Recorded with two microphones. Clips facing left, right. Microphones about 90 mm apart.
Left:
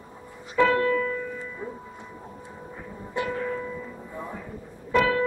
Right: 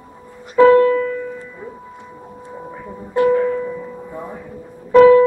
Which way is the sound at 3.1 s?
50° right (ahead or behind).